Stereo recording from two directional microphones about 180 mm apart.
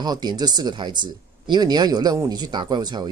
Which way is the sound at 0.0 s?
20° right (ahead or behind).